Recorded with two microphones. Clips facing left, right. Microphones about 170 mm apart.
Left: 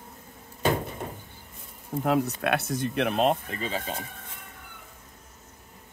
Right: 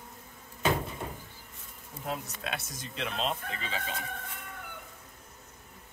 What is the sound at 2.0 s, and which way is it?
Speech, 65° left (ahead or behind).